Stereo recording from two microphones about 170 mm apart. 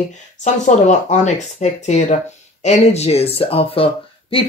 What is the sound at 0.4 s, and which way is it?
Speech, 45° left (ahead or behind).